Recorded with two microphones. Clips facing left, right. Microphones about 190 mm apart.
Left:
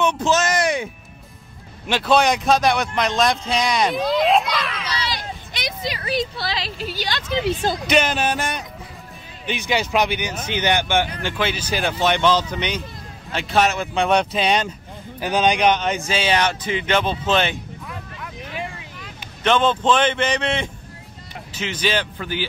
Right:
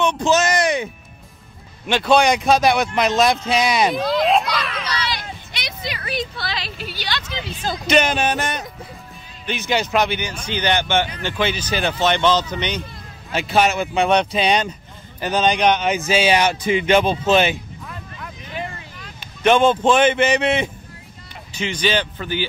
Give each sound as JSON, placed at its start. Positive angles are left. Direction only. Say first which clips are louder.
{"t": 0.0, "sound": "speech", "louder": "right 2 dB", "side_deg": 5}
{"t": 1.9, "sound": "speech", "louder": "right 2 dB", "side_deg": 5}
{"t": 4.9, "sound": "a sound", "louder": "right 1 dB", "side_deg": 35}
{"t": 7.7, "sound": "speech", "louder": "right 1 dB", "side_deg": 5}
{"t": 13.3, "sound": "speech", "louder": "right 1 dB", "side_deg": -5}
{"t": 16.1, "sound": "speech", "louder": "right 4 dB", "side_deg": -10}
{"t": 17.8, "sound": "music", "louder": "left 1 dB", "side_deg": 5}
{"t": 19.4, "sound": "speech", "louder": "right 3 dB", "side_deg": -10}
{"t": 21.5, "sound": "speech", "louder": "right 2 dB", "side_deg": 5}